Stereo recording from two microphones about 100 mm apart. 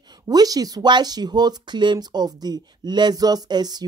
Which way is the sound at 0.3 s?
40° right (ahead or behind).